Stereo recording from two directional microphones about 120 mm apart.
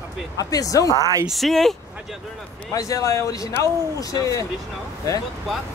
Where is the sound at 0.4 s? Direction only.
30° left (ahead or behind).